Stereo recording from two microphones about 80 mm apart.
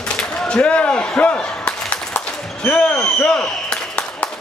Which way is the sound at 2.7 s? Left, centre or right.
Centre.